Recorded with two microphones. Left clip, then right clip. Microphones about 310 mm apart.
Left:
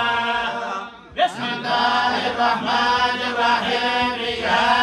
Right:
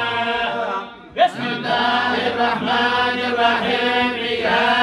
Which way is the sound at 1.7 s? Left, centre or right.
Left.